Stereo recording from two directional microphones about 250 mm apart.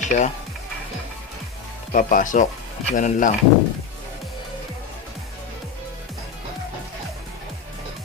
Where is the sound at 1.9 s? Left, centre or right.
Left.